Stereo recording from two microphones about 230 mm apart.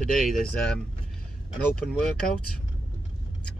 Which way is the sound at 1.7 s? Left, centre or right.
Centre.